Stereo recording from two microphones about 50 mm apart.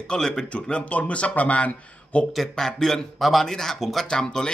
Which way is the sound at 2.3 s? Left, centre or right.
Centre.